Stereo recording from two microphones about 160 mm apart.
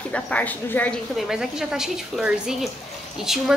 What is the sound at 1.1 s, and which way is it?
A woman's voice, 5° right (ahead or behind).